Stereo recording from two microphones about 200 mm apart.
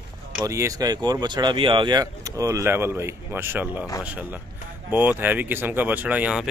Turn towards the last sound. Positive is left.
turn(degrees=-5)  # may be behind; listen again after turning